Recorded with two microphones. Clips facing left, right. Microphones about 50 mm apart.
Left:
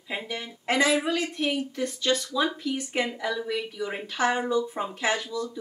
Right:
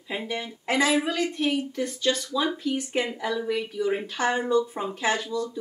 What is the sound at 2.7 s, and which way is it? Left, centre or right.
A woman's voice, centre.